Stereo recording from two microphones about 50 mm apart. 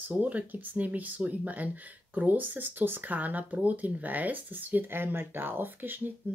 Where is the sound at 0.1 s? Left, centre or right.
Right.